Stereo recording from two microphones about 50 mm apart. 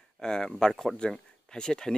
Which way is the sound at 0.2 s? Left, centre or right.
Centre.